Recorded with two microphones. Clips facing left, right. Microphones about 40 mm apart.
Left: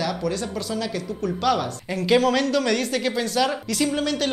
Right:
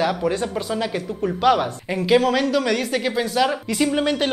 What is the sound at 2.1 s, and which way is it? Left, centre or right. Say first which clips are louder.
Speech: right 1 dB; centre.